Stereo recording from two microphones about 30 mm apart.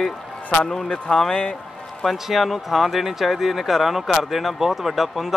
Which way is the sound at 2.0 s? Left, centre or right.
Centre.